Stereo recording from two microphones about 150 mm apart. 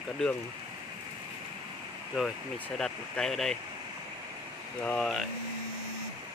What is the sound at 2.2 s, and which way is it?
Speech, centre (ahead or behind).